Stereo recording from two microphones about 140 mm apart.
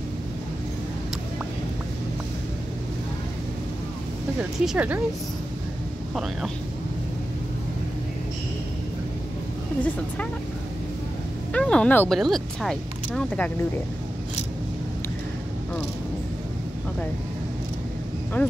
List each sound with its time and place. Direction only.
4.4 s speech: 10° right (ahead or behind)
11.5 s speech: 5° left (ahead or behind)
18.4 s speech: 15° left (ahead or behind)